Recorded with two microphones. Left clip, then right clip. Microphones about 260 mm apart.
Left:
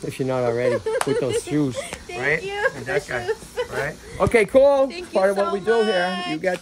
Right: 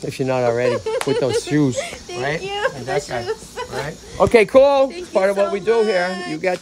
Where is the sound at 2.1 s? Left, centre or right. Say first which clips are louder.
Left 1 dB; centre.